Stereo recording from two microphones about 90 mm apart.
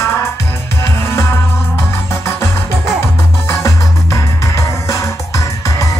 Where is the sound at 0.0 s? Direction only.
30° left (ahead or behind).